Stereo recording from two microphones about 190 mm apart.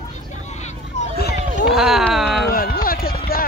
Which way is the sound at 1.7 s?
Centre (ahead or behind).